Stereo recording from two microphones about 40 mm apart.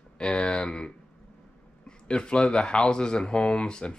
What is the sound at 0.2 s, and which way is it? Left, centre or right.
Speech, left.